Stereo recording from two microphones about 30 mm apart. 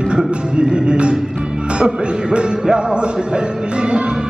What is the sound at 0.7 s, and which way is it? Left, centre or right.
Speech, right.